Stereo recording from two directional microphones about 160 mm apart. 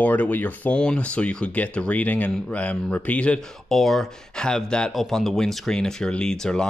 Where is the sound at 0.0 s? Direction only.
10° left (ahead or behind).